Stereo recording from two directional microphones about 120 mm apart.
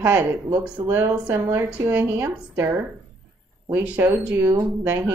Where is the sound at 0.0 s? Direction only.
15° right (ahead or behind).